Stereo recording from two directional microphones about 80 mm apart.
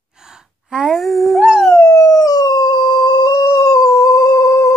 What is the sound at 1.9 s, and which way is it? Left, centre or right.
Howl, left.